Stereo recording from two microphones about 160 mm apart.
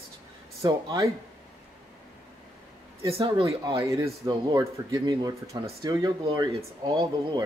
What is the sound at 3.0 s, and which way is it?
Speech, 30° right (ahead or behind).